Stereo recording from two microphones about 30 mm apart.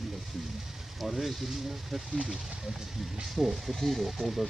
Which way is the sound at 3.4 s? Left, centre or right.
Centre.